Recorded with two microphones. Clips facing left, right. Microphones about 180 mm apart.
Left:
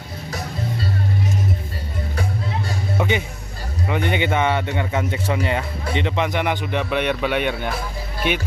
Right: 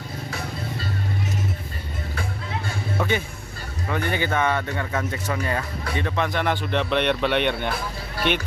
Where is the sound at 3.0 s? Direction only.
15° left (ahead or behind).